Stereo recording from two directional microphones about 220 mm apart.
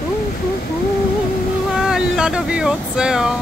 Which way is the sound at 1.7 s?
Centre (ahead or behind).